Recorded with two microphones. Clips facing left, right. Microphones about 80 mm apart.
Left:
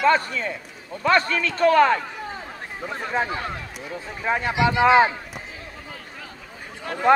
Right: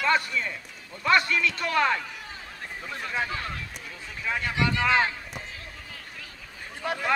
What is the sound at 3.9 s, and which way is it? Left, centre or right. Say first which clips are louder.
Speech: left 7 dB; left.